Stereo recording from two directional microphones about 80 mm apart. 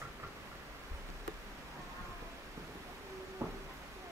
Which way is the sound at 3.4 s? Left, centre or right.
Right.